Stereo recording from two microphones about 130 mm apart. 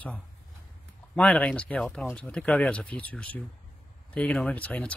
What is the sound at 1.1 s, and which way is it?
Speech, 10° left (ahead or behind).